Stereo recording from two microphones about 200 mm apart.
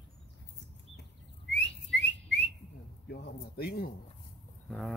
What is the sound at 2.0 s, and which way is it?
Whistling, 60° left (ahead or behind).